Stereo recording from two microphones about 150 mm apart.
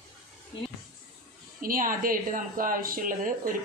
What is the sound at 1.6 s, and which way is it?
Speech, 70° right (ahead or behind).